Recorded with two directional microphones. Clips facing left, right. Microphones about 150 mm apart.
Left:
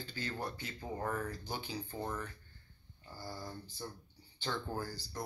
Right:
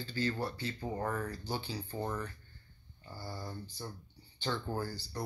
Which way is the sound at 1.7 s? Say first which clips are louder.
Right 2 dB; centre (ahead or behind).